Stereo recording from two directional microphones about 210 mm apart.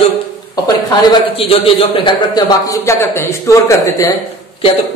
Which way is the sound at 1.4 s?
25° left (ahead or behind).